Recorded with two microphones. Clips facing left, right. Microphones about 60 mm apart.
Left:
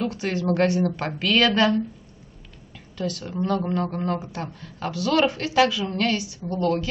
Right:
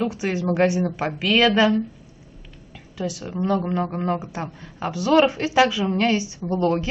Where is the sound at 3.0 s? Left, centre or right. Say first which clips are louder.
Right 1 dB; centre.